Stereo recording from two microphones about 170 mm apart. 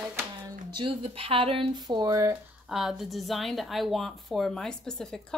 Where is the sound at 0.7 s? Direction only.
30° right (ahead or behind).